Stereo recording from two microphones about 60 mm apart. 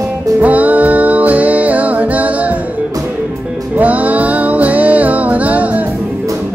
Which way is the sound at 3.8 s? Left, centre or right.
Right.